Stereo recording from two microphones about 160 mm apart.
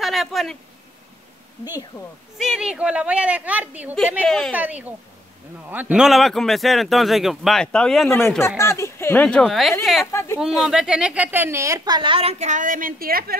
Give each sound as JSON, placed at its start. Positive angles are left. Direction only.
{"t": 0.0, "sound": "speech", "side_deg": 0}
{"t": 1.6, "sound": "speech", "side_deg": 25}
{"t": 2.3, "sound": "a woman's voice", "side_deg": -5}
{"t": 4.2, "sound": "a woman's voice", "side_deg": 5}
{"t": 4.6, "sound": "a woman's voice", "side_deg": -10}
{"t": 8.4, "sound": "a woman's voice", "side_deg": 15}
{"t": 10.1, "sound": "a woman's voice", "side_deg": 15}
{"t": 10.4, "sound": "a woman's voice", "side_deg": -5}